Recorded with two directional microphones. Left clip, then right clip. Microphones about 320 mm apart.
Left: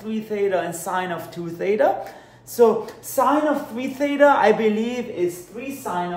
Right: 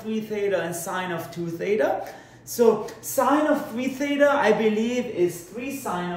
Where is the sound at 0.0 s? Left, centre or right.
Centre.